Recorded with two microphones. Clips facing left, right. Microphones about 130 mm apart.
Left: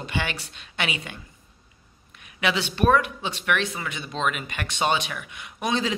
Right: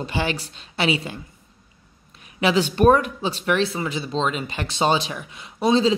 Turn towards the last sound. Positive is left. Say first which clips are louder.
# right 8 dB
turn(degrees=-30)  # may be behind; listen again after turning